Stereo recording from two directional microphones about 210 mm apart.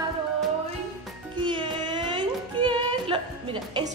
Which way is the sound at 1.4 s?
25° right (ahead or behind).